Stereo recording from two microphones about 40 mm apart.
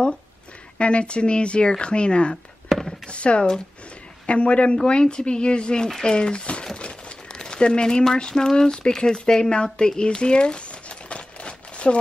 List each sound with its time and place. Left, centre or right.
0.7 s speech: left
2.7 s a sound: centre
3.1 s speech: left